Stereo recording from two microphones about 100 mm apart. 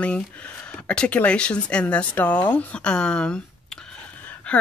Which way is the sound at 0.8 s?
10° left (ahead or behind).